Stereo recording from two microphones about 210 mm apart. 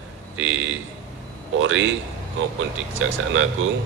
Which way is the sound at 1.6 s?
65° right (ahead or behind).